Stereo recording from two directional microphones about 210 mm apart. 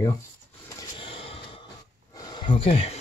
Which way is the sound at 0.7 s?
25° left (ahead or behind).